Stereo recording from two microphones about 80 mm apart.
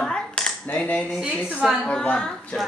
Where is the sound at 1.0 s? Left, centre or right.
Centre.